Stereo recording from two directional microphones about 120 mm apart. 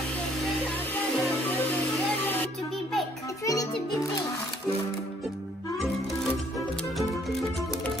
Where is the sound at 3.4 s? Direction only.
30° left (ahead or behind).